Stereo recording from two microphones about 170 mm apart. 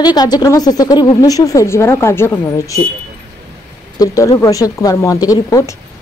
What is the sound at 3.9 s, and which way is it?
A woman's voice, 20° left (ahead or behind).